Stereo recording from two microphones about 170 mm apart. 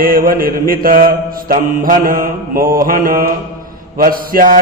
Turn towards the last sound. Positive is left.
turn(degrees=-55)  # may be behind; listen again after turning